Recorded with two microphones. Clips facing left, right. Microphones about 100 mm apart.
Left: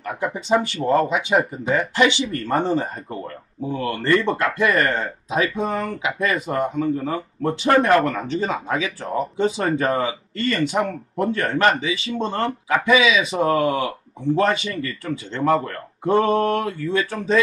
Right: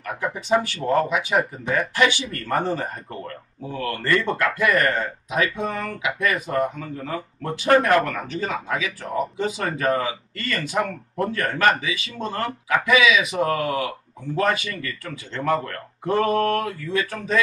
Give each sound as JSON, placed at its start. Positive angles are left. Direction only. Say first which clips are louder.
{"t": 0.0, "sound": "speech", "louder": "left 2 dB", "side_deg": 20}